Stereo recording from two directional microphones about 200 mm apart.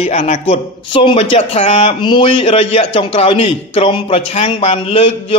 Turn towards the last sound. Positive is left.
turn(degrees=30)  # may be behind; listen again after turning